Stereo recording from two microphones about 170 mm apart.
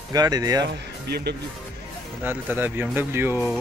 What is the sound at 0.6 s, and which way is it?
Speech, 75° right (ahead or behind).